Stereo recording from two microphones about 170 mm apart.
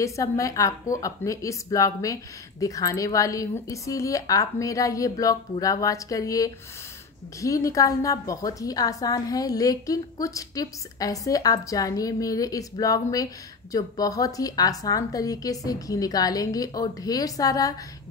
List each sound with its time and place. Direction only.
0.0 s a woman's voice: 20° left (ahead or behind)